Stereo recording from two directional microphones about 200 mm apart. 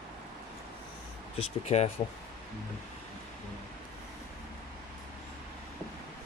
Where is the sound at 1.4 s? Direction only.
30° left (ahead or behind).